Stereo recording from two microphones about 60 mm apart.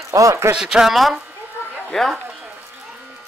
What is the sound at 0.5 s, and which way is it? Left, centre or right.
Speech, centre.